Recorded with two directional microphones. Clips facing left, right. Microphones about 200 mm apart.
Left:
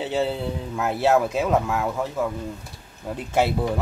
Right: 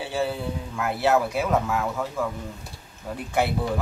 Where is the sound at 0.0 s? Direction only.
20° left (ahead or behind).